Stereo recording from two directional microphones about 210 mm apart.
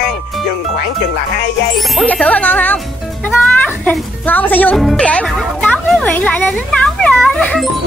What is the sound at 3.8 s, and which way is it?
Speech, 10° left (ahead or behind).